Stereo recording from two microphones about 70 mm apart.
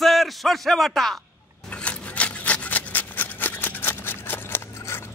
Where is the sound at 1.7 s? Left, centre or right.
Centre.